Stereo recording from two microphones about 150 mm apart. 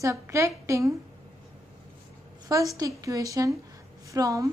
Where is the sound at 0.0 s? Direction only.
20° right (ahead or behind).